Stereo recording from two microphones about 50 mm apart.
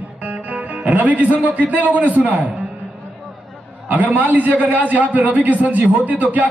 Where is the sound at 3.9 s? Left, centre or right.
Right.